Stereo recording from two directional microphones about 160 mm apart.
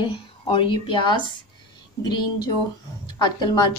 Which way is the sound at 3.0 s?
30° left (ahead or behind).